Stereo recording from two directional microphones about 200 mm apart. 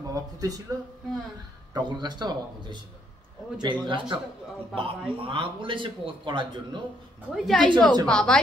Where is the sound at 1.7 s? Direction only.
20° right (ahead or behind).